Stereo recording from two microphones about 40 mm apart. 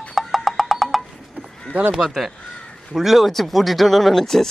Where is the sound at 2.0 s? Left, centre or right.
Centre.